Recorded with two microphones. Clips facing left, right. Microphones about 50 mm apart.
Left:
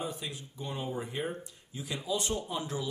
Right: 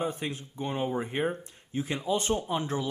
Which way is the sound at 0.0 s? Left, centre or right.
Right.